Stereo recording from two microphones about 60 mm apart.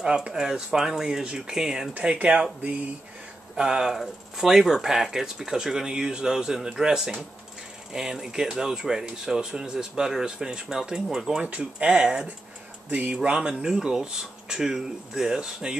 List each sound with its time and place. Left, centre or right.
0.0 s speech: centre
3.5 s speech: centre
11.4 s speech: centre